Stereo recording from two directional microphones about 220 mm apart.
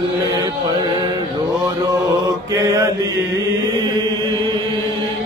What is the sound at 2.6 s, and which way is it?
Mantra, 15° right (ahead or behind).